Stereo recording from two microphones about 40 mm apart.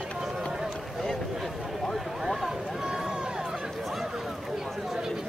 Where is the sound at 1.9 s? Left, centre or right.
Centre.